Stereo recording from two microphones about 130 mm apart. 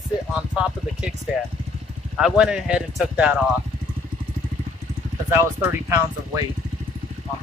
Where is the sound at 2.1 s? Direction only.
5° right (ahead or behind).